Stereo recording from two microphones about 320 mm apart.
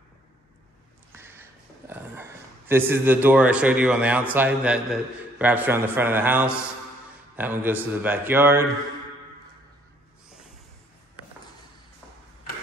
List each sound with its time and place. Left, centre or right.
1.1 s a man's voice: centre